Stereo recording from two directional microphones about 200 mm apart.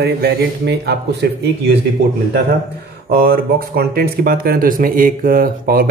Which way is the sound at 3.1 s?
50° right (ahead or behind).